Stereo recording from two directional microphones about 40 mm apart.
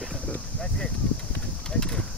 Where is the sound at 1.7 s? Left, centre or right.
Centre.